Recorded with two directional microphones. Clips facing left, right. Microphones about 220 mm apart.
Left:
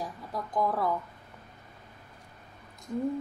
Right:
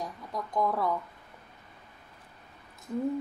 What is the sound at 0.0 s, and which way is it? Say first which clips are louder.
Speech: even; 5° left (ahead or behind).